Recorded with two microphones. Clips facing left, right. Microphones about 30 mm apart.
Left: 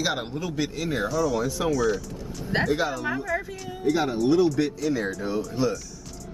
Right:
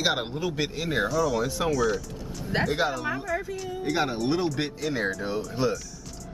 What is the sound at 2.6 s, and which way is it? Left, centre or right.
Speech, centre.